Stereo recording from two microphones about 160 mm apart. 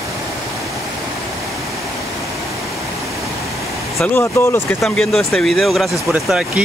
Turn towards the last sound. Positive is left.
turn(degrees=-5)  # may be behind; listen again after turning